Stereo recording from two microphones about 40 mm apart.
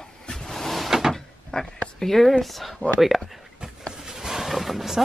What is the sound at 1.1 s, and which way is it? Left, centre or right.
Cupboard open or close, centre.